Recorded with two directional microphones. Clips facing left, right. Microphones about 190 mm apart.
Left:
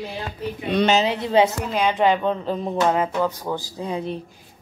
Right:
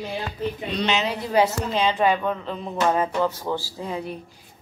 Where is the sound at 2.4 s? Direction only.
40° left (ahead or behind).